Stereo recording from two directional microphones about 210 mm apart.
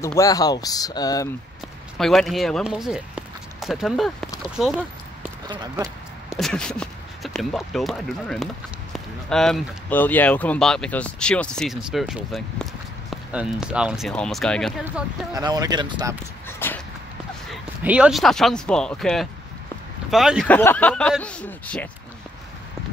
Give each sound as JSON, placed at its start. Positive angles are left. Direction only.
{"t": 0.2, "sound": "speech", "side_deg": 15}
{"t": 2.0, "sound": "speech", "side_deg": 0}
{"t": 5.5, "sound": "speech", "side_deg": -20}
{"t": 6.3, "sound": "speech", "side_deg": 5}
{"t": 14.9, "sound": "speech", "side_deg": -15}
{"t": 16.4, "sound": "a sound", "side_deg": 10}
{"t": 17.5, "sound": "speech", "side_deg": -5}